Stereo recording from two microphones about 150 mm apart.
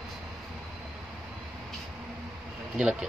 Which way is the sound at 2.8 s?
5° right (ahead or behind).